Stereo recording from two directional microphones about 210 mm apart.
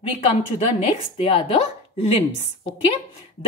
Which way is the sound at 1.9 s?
25° left (ahead or behind).